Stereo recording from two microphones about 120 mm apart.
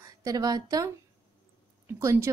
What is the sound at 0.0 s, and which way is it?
A woman's voice, 30° right (ahead or behind).